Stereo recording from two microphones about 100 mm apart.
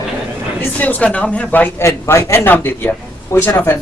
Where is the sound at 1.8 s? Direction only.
30° left (ahead or behind).